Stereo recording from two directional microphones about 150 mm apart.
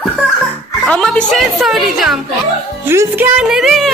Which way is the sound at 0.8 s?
5° left (ahead or behind).